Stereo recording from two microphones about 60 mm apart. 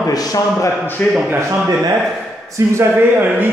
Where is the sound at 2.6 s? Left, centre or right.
Right.